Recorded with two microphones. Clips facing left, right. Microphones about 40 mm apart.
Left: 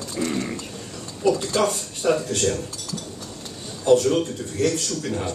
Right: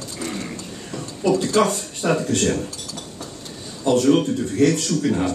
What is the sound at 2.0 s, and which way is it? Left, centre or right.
Speech, right.